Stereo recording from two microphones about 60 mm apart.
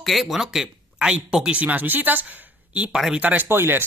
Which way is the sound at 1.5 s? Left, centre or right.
Right.